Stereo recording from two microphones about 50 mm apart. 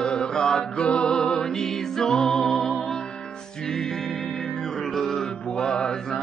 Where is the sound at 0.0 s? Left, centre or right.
Centre.